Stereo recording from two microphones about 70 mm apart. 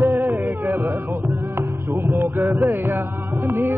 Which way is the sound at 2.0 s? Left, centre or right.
Right.